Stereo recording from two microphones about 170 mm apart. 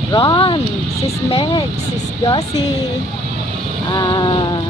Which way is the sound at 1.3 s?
35° left (ahead or behind).